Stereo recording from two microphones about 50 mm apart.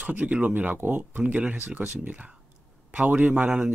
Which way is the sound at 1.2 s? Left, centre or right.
Right.